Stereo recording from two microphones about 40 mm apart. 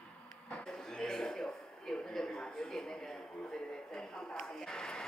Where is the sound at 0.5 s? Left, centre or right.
Centre.